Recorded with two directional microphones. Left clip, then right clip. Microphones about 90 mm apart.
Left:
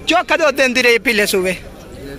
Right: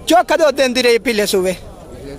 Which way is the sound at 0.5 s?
30° right (ahead or behind).